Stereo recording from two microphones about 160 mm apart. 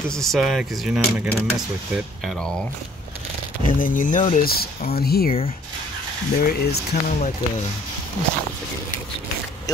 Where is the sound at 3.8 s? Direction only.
60° left (ahead or behind).